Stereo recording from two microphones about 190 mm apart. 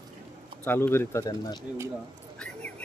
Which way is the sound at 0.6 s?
10° left (ahead or behind).